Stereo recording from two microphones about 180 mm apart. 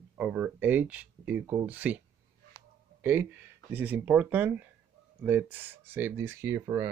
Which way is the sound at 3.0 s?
10° right (ahead or behind).